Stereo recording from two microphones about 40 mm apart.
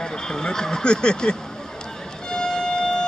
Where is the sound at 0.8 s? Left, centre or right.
Left.